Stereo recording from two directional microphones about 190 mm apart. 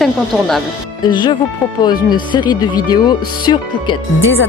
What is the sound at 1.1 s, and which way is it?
Speech, 25° left (ahead or behind).